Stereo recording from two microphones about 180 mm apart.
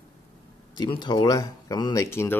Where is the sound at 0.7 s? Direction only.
25° left (ahead or behind).